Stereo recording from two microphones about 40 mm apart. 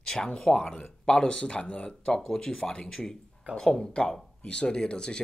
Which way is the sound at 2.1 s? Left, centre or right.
Centre.